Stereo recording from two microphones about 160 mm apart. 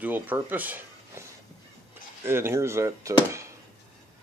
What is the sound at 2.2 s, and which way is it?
Speech, 15° right (ahead or behind).